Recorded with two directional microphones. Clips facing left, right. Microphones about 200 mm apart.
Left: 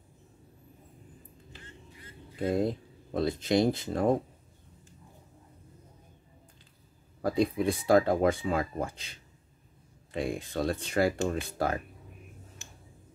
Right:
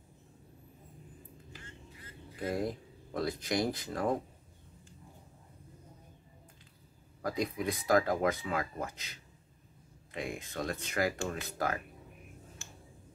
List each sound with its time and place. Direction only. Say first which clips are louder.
2.3 s speech: left 6 dB; 25° left (ahead or behind)
7.2 s speech: left 7 dB; 30° left (ahead or behind)
12.6 s a sound: even; 20° left (ahead or behind)